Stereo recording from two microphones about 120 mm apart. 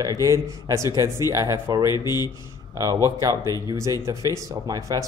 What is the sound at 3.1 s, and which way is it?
Speech, 30° right (ahead or behind).